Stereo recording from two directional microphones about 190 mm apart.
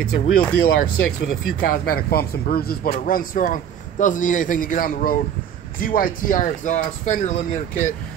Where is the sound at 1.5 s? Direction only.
50° left (ahead or behind).